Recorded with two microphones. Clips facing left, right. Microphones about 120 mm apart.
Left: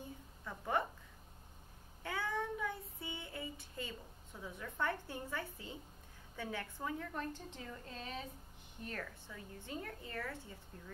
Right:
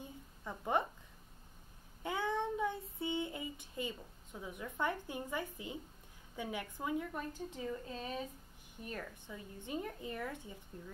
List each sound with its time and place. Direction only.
0.5 s speech: 20° right (ahead or behind)
2.0 s child singing: 20° right (ahead or behind)
6.3 s a woman's voice: 15° right (ahead or behind)